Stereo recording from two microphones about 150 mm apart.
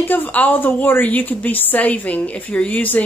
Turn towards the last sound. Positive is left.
turn(degrees=10)  # may be behind; listen again after turning